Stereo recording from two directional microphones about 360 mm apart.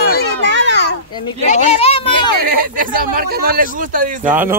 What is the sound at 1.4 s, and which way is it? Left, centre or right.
Speech, centre.